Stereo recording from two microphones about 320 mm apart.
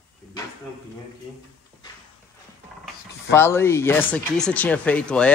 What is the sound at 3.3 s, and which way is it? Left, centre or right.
Speech, centre.